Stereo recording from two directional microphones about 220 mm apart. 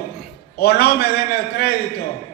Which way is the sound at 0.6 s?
45° left (ahead or behind).